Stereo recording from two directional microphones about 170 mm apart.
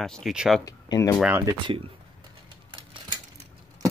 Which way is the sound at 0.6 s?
20° left (ahead or behind).